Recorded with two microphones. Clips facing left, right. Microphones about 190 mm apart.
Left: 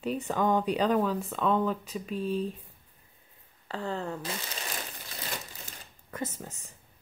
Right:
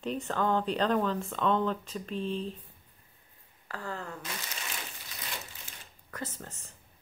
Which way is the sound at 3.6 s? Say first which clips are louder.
Left 5 dB; 25° left (ahead or behind).